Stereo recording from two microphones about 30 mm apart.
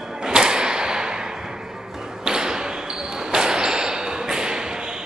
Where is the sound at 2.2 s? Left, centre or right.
Right.